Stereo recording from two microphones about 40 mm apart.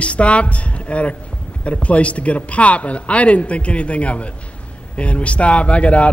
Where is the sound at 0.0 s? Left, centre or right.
Left.